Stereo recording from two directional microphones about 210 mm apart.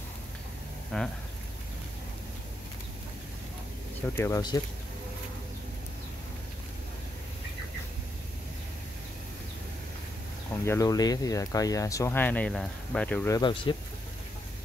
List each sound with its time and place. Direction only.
0.9 s speech: 5° left (ahead or behind)
4.2 s speech: 15° left (ahead or behind)
10.6 s speech: 15° left (ahead or behind)
13.4 s speech: 25° left (ahead or behind)